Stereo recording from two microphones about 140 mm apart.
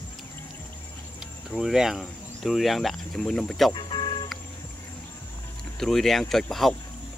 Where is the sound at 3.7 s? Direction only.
35° left (ahead or behind).